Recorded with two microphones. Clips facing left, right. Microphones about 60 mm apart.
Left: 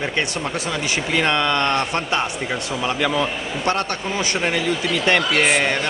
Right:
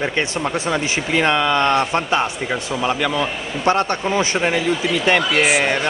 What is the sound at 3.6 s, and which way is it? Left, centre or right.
Speech, centre.